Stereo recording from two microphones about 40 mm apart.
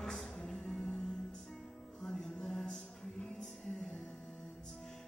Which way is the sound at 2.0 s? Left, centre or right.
Centre.